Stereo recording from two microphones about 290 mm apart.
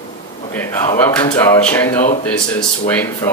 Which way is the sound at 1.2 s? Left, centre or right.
Centre.